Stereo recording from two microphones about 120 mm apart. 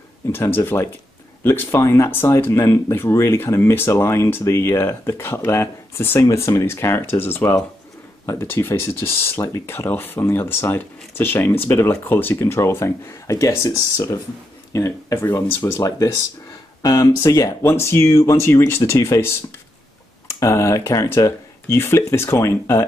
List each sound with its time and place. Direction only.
0.3 s speech: 20° left (ahead or behind)
20.3 s speech: 25° left (ahead or behind)